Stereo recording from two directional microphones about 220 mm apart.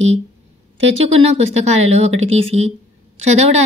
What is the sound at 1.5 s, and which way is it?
A woman's voice, 30° right (ahead or behind).